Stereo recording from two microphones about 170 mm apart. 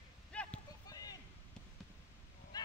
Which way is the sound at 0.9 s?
20° left (ahead or behind).